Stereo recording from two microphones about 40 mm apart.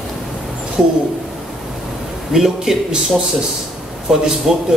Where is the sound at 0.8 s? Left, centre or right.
Centre.